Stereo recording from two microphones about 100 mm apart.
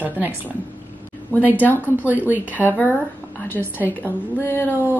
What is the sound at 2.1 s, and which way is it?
Speech, 15° right (ahead or behind).